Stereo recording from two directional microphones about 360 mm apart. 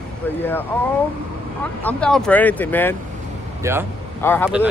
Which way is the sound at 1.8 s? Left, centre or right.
Centre.